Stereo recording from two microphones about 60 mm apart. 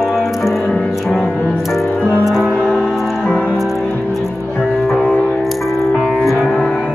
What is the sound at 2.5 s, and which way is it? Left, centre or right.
Music, centre.